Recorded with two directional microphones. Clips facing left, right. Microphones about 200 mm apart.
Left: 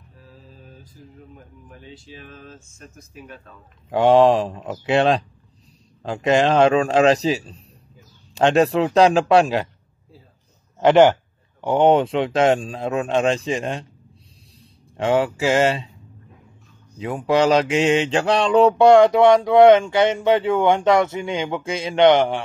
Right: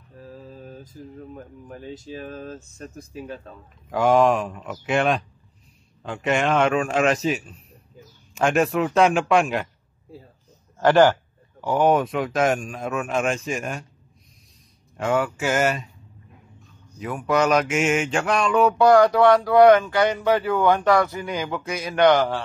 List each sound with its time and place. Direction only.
0.1 s mantra: 45° right (ahead or behind)
1.3 s speech: 45° right (ahead or behind)
3.9 s a man's voice: 30° left (ahead or behind)
10.8 s mantra: 20° left (ahead or behind)
11.6 s a man's voice: 25° left (ahead or behind)
15.0 s mantra: 30° left (ahead or behind)
17.3 s mantra: 30° left (ahead or behind)